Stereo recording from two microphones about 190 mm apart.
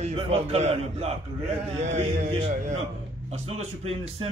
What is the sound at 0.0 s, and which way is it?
A man's voice, 35° right (ahead or behind).